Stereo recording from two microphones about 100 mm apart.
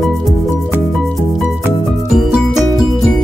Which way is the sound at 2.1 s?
5° right (ahead or behind).